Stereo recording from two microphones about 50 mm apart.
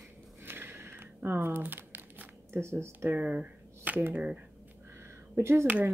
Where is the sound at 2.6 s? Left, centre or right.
Right.